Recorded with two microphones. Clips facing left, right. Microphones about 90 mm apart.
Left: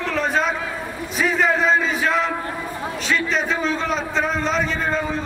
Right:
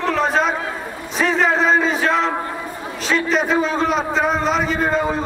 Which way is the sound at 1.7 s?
35° right (ahead or behind).